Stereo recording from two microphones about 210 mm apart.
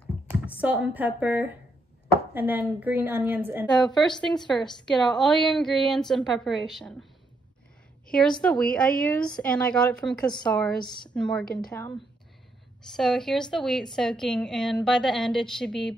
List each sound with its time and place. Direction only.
0.6 s a woman's voice: 5° right (ahead or behind)
3.9 s a woman's voice: centre (ahead or behind)
8.1 s a woman's voice: 5° left (ahead or behind)
12.9 s a woman's voice: centre (ahead or behind)